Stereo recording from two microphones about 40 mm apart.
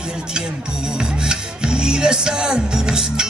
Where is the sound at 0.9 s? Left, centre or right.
Centre.